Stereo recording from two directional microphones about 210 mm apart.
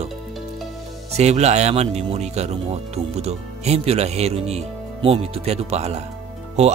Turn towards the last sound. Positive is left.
turn(degrees=-30)  # may be behind; listen again after turning